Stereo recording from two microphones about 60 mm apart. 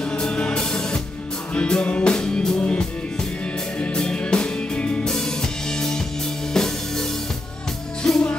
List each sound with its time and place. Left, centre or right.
0.0 s music: centre
3.8 s music: centre
5.0 s music: centre